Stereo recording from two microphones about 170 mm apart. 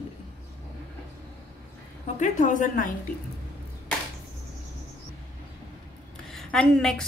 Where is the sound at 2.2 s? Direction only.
50° left (ahead or behind).